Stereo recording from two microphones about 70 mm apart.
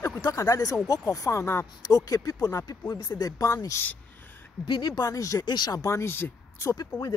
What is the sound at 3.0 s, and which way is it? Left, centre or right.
Speech, left.